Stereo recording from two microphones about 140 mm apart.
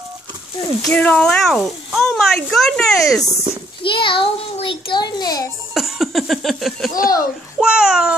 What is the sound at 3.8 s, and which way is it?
A child's voice, 35° left (ahead or behind).